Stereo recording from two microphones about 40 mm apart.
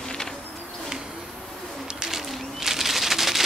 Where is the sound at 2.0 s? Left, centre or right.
Centre.